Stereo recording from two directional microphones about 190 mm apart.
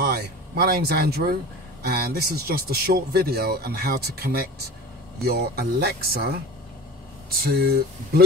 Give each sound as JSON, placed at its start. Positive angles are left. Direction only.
{"t": 0.0, "sound": "speech", "side_deg": -55}